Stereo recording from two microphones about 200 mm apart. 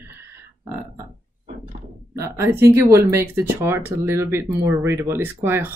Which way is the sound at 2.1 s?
15° right (ahead or behind).